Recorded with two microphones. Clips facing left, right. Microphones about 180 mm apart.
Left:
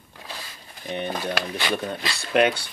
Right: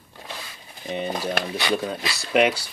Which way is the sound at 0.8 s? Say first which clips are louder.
Right 1 dB; 5° right (ahead or behind).